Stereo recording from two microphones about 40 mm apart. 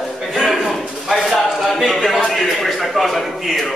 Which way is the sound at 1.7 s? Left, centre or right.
Centre.